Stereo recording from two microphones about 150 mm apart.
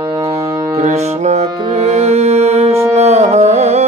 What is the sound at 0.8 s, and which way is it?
Music, 45° right (ahead or behind).